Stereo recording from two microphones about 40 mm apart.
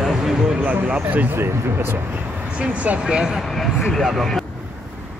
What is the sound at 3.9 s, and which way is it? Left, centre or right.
Speech, centre.